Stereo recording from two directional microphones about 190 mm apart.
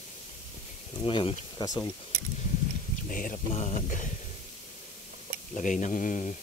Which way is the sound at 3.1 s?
45° left (ahead or behind).